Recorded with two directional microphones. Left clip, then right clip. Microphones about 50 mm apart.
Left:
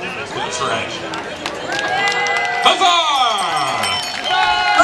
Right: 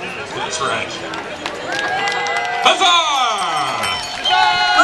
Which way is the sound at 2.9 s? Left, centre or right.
Centre.